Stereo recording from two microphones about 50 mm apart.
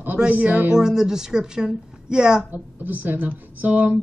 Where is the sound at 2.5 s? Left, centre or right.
Right.